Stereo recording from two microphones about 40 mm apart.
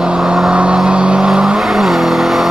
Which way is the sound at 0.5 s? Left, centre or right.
Right.